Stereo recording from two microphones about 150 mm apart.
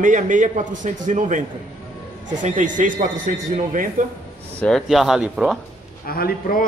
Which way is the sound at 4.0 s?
60° right (ahead or behind).